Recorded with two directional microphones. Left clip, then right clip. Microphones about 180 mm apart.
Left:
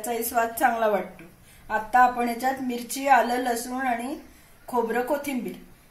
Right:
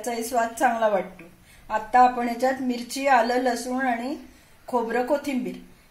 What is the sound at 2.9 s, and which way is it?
Speech, 20° right (ahead or behind).